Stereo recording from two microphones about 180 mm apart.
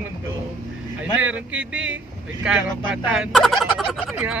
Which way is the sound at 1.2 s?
10° right (ahead or behind).